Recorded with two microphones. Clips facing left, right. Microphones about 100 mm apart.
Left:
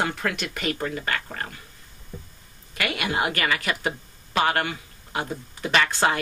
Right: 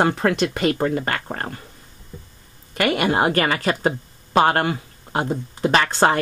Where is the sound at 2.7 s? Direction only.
40° right (ahead or behind).